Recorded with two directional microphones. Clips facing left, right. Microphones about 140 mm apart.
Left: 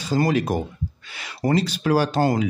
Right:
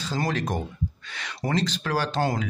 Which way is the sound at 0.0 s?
10° left (ahead or behind).